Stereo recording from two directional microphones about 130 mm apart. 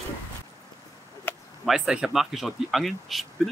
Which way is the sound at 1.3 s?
15° left (ahead or behind).